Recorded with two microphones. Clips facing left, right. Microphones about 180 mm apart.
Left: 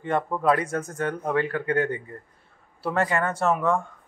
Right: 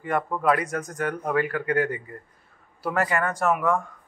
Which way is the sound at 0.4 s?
30° left (ahead or behind).